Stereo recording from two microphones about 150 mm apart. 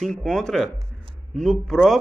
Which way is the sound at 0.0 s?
5° left (ahead or behind).